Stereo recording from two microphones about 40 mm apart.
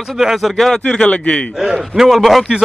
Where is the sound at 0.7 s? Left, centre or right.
Left.